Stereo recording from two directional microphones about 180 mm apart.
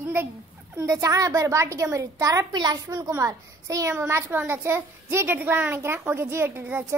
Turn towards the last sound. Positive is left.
turn(degrees=-10)  # may be behind; listen again after turning